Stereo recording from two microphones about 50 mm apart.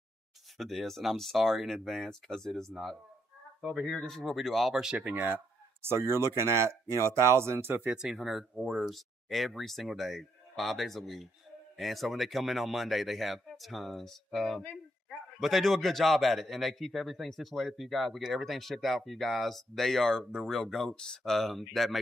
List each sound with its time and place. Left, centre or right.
0.6 s speech: centre
3.8 s speech: centre
4.9 s speech: right
5.2 s speech: right
7.8 s speech: centre
8.1 s speech: centre
21.2 s speech: centre